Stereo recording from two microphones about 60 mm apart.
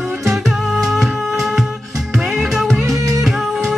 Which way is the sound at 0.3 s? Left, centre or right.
Centre.